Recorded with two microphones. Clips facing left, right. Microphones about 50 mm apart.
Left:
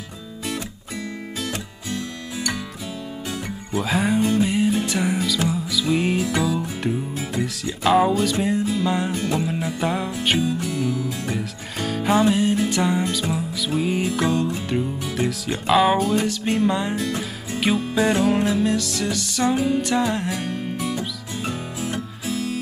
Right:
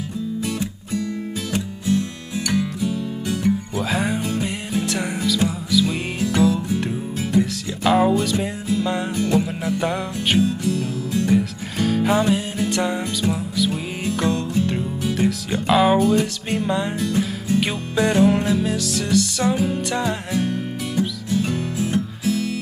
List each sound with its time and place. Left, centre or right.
2.5 s music: left
3.7 s music: centre
10.4 s music: centre
11.1 s music: centre
20.3 s music: left; by 22.4 s centre